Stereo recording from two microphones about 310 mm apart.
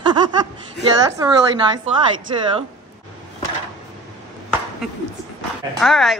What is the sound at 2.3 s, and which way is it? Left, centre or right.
Speech, centre.